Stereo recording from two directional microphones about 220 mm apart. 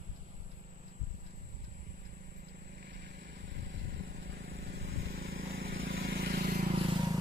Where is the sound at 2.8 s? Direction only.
50° right (ahead or behind).